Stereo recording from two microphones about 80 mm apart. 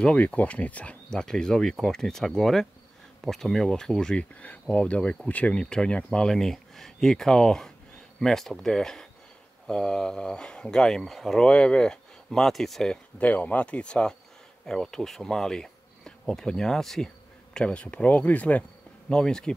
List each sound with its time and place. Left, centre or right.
0.0 s speech: centre
13.2 s speech: centre